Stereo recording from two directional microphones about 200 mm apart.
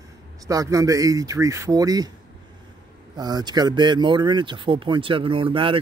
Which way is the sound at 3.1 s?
20° right (ahead or behind).